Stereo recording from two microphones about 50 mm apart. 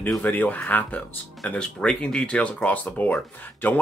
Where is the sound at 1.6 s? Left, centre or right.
Centre.